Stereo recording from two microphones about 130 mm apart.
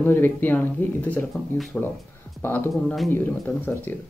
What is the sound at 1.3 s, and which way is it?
Speech, centre (ahead or behind).